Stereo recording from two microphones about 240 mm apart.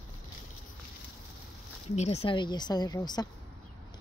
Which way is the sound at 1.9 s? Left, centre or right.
Left.